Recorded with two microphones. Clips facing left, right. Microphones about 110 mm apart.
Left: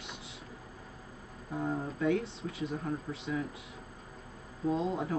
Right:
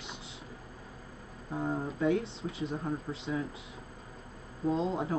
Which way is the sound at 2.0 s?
30° right (ahead or behind).